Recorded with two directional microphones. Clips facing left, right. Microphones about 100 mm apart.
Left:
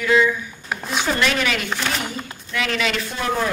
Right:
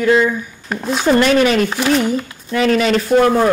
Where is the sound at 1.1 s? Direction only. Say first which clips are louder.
Right 12 dB; 40° right (ahead or behind).